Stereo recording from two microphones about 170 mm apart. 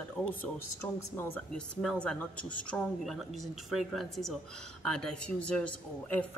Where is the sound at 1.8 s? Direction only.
5° left (ahead or behind).